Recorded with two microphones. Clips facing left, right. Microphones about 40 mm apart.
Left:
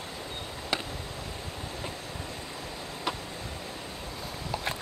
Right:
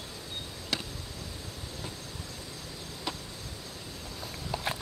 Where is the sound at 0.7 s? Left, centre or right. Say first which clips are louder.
Left 3 dB; centre.